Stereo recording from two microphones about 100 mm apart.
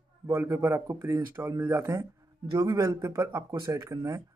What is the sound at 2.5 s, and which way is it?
Speech, 50° right (ahead or behind).